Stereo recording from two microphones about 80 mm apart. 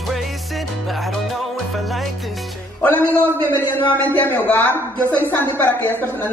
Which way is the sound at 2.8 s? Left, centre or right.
Centre.